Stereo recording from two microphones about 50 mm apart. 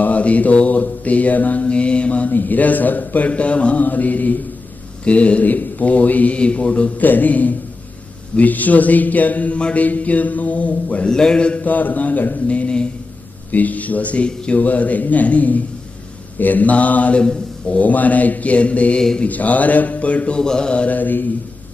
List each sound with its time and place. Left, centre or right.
0.0 s mantra: left
2.3 s speech: left
5.0 s mantra: left
7.1 s speech: left
11.1 s speech: centre
11.6 s speech: left
12.4 s a sound: left
13.5 s speech: left
18.9 s speech: centre
19.2 s speech: left
20.3 s mantra: centre; by 21.3 s left